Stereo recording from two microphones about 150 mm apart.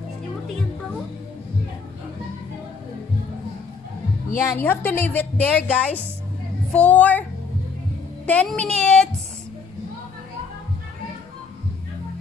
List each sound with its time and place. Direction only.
4.4 s a woman's voice: 15° left (ahead or behind)
8.3 s a woman's voice: 10° left (ahead or behind)